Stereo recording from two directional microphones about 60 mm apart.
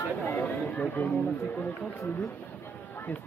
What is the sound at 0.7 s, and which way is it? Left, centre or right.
Speech, left.